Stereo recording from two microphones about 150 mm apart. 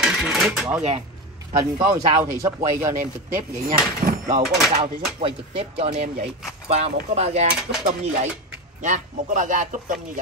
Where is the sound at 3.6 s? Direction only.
70° right (ahead or behind).